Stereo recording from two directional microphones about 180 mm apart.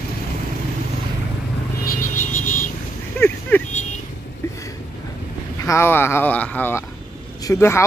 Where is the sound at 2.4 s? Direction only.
45° left (ahead or behind).